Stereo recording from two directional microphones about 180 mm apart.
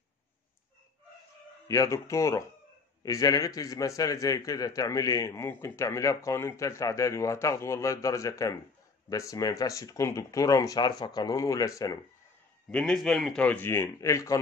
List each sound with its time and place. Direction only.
1.7 s a man's voice: 15° left (ahead or behind)
12.7 s a man's voice: 5° left (ahead or behind)